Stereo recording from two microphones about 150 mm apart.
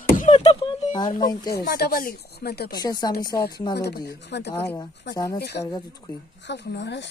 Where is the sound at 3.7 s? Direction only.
90° left.